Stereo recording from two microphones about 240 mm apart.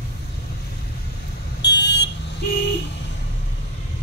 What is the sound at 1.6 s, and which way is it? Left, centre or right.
Vehicle, left.